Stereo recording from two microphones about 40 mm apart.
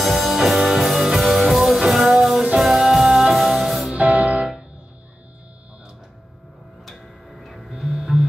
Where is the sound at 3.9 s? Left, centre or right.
Right.